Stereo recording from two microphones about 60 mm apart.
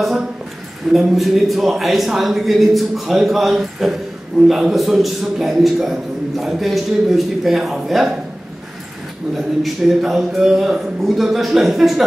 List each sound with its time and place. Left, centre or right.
0.9 s a man's voice: centre
9.3 s a man's voice: centre